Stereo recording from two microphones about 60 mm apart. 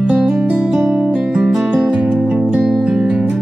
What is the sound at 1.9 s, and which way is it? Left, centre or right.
Music, centre.